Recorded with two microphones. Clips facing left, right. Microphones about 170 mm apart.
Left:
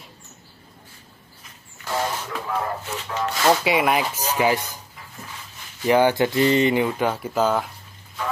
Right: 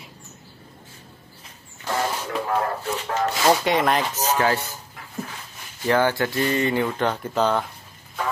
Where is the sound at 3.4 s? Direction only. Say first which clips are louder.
Left 1 dB; 5° left (ahead or behind).